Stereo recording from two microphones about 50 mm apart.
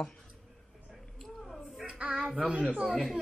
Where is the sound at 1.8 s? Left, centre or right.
Right.